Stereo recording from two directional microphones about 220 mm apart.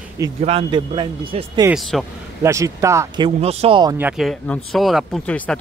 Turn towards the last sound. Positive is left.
turn(degrees=5)  # may be behind; listen again after turning